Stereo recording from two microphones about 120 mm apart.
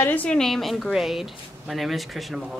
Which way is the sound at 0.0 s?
10° left (ahead or behind).